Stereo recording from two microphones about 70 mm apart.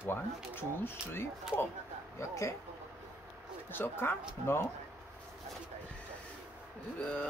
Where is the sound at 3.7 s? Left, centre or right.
Left.